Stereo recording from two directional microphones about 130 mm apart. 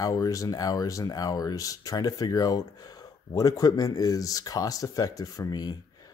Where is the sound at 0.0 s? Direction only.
25° left (ahead or behind).